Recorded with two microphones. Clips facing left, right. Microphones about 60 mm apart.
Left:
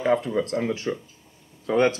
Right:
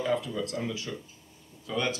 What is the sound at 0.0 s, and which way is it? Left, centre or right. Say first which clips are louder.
Speech: left 7 dB; left.